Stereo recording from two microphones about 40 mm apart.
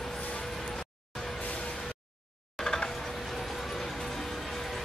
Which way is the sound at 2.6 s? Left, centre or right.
Centre.